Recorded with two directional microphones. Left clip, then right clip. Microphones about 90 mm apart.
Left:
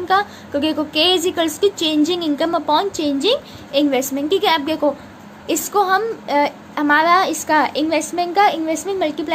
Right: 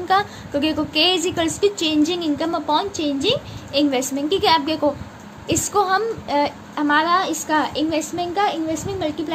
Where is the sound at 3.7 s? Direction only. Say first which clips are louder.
Left 2 dB; 15° left (ahead or behind).